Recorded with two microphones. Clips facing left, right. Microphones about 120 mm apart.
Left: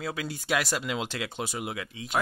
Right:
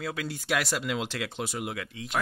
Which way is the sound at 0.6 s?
Centre (ahead or behind).